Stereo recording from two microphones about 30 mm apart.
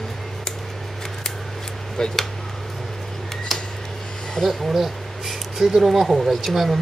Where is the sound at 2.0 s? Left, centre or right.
Left.